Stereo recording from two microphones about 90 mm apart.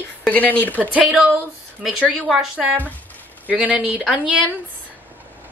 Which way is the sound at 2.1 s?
Centre (ahead or behind).